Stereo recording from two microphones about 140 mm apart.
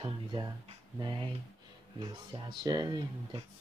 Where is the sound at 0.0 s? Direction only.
30° right (ahead or behind).